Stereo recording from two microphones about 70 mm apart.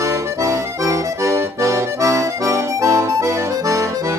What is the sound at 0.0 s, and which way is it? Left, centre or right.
Accordion, right.